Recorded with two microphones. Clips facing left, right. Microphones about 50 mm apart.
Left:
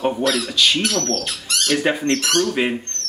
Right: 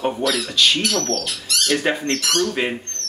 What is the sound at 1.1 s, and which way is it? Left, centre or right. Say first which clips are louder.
Speech: even; left.